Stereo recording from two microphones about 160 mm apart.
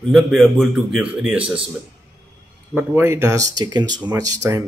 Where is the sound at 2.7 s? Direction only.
15° right (ahead or behind).